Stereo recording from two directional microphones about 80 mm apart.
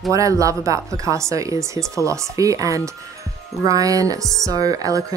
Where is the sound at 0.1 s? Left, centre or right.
Right.